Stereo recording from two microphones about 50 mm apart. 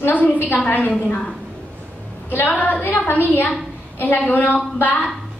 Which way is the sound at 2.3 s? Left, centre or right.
Left.